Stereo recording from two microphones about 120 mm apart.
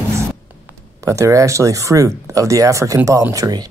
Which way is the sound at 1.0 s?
25° right (ahead or behind).